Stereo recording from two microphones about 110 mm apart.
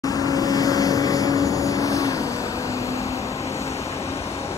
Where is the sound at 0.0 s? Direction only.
35° left (ahead or behind).